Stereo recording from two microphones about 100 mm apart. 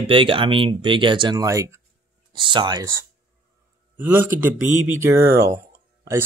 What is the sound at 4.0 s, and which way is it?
Speech, 20° right (ahead or behind).